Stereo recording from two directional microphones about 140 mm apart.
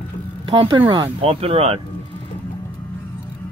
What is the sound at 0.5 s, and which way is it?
Speech, 35° right (ahead or behind).